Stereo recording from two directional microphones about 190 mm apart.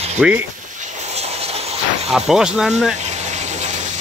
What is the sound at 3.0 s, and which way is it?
Gush, 35° right (ahead or behind).